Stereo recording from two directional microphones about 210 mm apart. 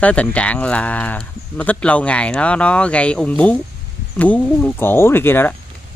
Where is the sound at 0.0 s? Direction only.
5° left (ahead or behind).